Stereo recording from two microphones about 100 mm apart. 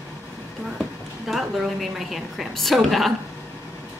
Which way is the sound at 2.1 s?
Centre (ahead or behind).